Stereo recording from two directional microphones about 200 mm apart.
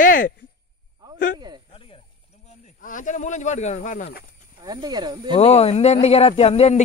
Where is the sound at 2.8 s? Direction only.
40° left (ahead or behind).